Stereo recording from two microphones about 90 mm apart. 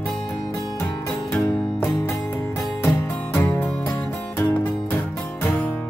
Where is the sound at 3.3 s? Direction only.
30° left (ahead or behind).